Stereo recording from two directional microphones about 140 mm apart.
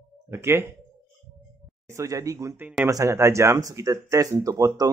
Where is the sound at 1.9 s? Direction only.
20° right (ahead or behind).